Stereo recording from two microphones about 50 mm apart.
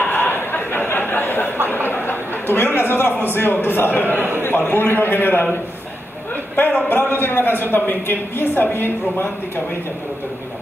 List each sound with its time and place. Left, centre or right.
0.0 s a sound: left
1.9 s chatter: left
2.9 s a man's voice: left
6.5 s a man's voice: left